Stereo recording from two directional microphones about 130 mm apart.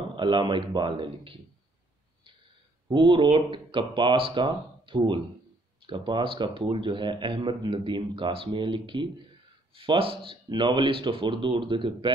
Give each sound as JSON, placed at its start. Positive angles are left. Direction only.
{"t": 0.1, "sound": "speech", "side_deg": -35}
{"t": 2.9, "sound": "speech", "side_deg": -40}